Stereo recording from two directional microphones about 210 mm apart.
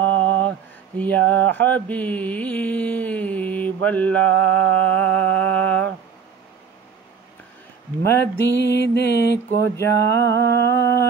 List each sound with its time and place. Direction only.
0.0 s mantra: 65° right (ahead or behind)
0.9 s mantra: 10° left (ahead or behind)
8.5 s music: 55° left (ahead or behind)
9.5 s mantra: 10° left (ahead or behind)
10.2 s humming: 55° right (ahead or behind)
10.7 s mantra: 15° left (ahead or behind)